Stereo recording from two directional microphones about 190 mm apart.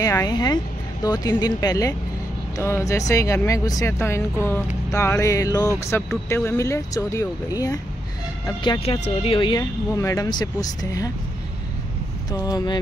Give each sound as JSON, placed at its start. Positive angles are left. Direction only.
{"t": 0.0, "sound": "speech", "side_deg": 20}
{"t": 12.3, "sound": "speech", "side_deg": 20}